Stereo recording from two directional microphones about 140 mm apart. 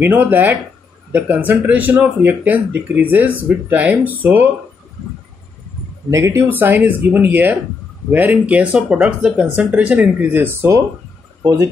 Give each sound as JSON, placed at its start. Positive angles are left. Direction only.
{"t": 0.0, "sound": "speech", "side_deg": -15}
{"t": 6.0, "sound": "speech", "side_deg": -20}
{"t": 11.4, "sound": "speech", "side_deg": -25}